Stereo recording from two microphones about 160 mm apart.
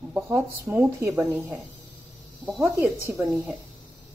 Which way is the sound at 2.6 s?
20° right (ahead or behind).